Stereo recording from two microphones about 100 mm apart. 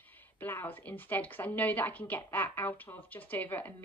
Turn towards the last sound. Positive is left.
turn(degrees=15)  # may be behind; listen again after turning